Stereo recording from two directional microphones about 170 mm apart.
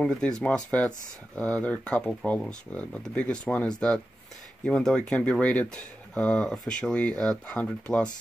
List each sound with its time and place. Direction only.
0.0 s speech: 5° left (ahead or behind)